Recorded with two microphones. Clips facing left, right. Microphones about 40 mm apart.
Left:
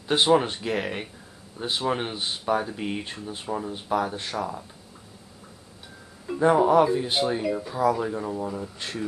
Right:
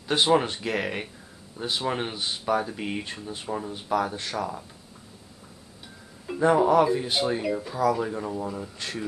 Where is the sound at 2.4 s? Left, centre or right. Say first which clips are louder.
Even; centre.